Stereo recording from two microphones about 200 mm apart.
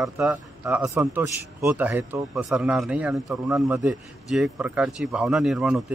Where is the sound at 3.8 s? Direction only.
Centre (ahead or behind).